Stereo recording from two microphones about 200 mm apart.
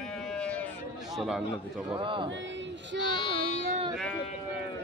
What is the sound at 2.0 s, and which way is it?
Speech, 25° right (ahead or behind).